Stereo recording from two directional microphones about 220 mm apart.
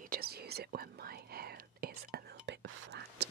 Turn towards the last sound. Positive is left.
turn(degrees=-50)  # may be behind; listen again after turning